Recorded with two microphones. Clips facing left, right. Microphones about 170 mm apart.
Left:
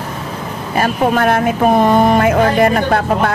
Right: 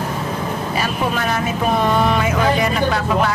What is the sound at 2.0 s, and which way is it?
Music, 55° left (ahead or behind).